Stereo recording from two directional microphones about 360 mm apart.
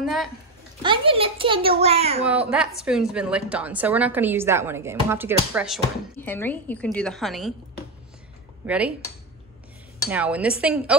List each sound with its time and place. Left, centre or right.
0.0 s a woman's voice: centre
0.8 s a child's voice: centre
2.2 s a woman's voice: centre
8.6 s a woman's voice: centre
10.0 s a woman's voice: centre